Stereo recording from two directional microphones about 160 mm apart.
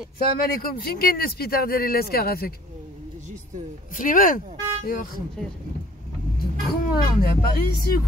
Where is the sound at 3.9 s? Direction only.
55° left (ahead or behind).